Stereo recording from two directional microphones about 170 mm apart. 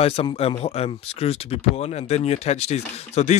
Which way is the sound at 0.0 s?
35° left (ahead or behind).